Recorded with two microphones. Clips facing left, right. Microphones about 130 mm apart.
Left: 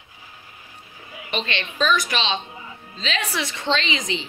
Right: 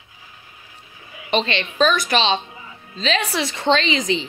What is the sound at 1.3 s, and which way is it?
A woman's voice, 35° right (ahead or behind).